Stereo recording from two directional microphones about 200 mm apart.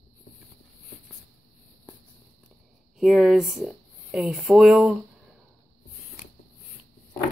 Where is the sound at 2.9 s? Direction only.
Centre (ahead or behind).